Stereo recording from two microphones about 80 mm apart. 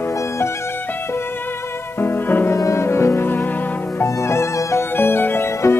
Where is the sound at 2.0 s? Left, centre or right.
Left.